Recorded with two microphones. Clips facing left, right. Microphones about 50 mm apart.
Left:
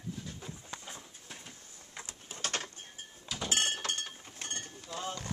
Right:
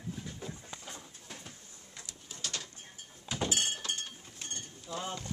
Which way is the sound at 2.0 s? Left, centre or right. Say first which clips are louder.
Left 4 dB; left.